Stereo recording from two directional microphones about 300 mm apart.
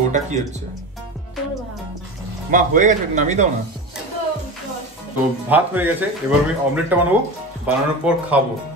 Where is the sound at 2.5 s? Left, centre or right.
Right.